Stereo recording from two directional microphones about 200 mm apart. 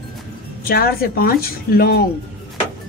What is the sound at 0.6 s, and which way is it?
A man's voice, 50° left (ahead or behind).